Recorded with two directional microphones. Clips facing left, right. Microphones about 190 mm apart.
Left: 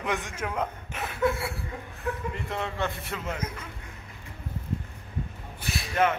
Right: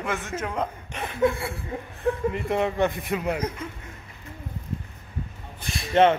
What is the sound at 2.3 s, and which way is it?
A man's voice, 20° right (ahead or behind).